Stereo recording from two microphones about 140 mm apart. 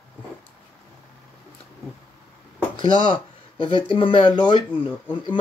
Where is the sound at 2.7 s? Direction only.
35° left (ahead or behind).